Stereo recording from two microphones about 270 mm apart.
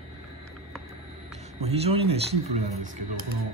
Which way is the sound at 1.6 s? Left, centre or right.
Right.